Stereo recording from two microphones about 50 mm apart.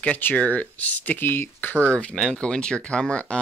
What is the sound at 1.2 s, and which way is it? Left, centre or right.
Speech, left.